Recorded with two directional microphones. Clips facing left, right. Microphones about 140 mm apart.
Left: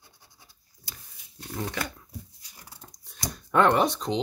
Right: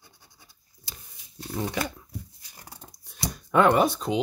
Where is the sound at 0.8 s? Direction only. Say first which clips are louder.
Right 1 dB; 25° right (ahead or behind).